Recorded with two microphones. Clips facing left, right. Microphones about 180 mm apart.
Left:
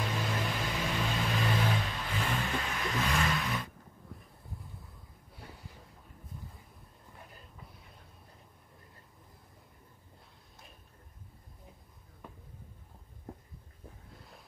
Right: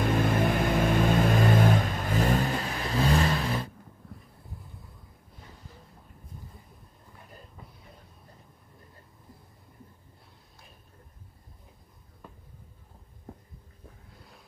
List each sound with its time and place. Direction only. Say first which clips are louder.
0.0 s vehicle: right 9 dB; 55° right (ahead or behind); by 3.7 s 35° right (ahead or behind)